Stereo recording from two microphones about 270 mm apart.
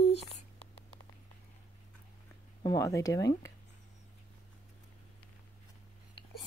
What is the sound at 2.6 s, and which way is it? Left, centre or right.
Speech, centre.